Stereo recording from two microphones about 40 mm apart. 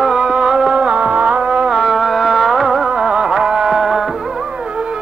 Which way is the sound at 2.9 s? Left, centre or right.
Right.